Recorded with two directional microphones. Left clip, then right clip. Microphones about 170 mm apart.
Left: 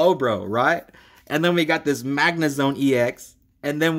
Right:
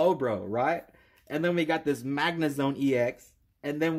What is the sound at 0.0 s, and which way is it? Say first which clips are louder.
Speech: left 7 dB; 15° left (ahead or behind).